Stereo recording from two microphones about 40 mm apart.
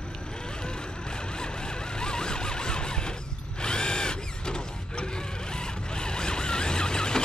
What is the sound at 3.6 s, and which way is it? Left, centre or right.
Mechanisms, centre.